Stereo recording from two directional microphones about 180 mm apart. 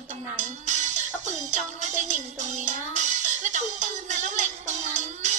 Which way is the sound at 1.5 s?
40° right (ahead or behind).